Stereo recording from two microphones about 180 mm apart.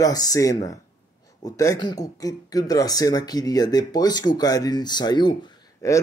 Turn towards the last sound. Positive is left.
turn(degrees=20)  # may be behind; listen again after turning